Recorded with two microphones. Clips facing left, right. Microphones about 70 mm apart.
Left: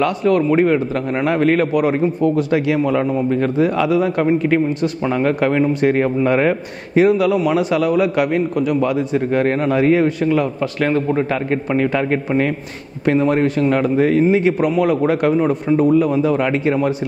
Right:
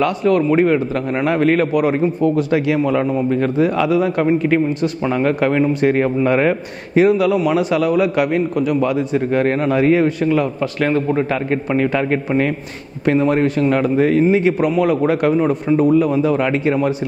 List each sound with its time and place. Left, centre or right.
0.0 s a man's voice: right